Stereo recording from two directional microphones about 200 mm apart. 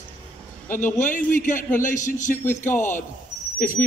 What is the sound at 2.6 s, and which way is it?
Speech, 10° left (ahead or behind).